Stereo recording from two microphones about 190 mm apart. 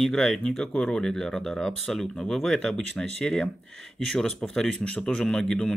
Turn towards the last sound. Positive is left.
turn(degrees=5)  # may be behind; listen again after turning